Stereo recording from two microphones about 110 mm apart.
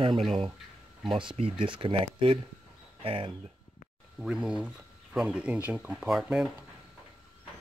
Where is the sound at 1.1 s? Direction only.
55° right (ahead or behind).